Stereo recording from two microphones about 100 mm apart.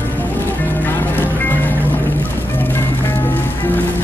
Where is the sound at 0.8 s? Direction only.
20° left (ahead or behind).